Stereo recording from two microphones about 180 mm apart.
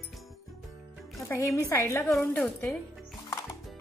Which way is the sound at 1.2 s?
15° left (ahead or behind).